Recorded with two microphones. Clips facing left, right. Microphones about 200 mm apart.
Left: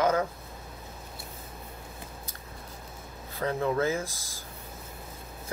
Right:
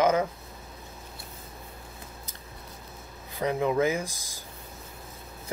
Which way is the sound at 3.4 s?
15° right (ahead or behind).